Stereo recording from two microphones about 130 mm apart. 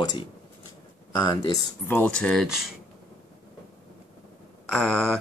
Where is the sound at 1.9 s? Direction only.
10° left (ahead or behind).